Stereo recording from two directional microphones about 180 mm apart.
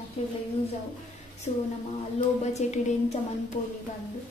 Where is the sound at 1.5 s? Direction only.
40° left (ahead or behind).